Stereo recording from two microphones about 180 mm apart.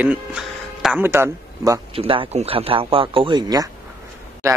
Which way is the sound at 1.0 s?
15° right (ahead or behind).